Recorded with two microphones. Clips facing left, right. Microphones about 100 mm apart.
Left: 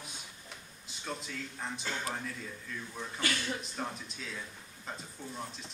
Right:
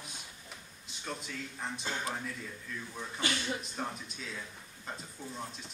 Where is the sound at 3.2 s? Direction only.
20° right (ahead or behind).